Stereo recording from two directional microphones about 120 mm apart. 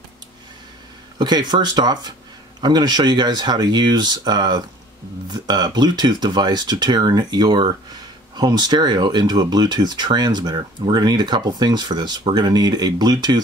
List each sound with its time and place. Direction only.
1.1 s speech: 35° right (ahead or behind)